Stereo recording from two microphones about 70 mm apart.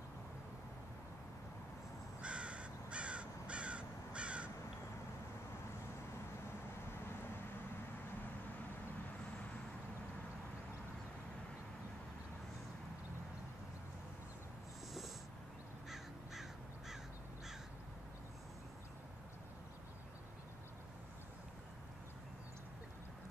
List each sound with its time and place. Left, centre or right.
2.2 s crow: centre
15.9 s crow: centre